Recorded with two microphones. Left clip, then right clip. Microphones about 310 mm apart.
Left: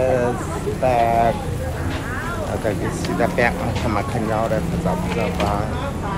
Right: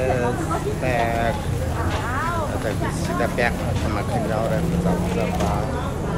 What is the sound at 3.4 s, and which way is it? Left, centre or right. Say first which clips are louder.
Speech: left 4 dB; centre.